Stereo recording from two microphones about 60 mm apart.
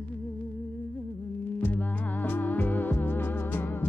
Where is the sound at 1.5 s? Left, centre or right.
Left.